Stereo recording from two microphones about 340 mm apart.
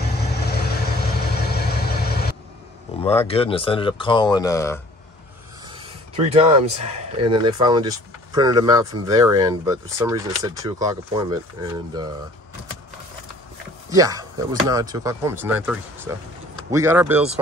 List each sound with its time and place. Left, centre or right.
0.3 s vehicle: left
3.0 s speech: centre
5.7 s speech: centre
13.8 s speech: centre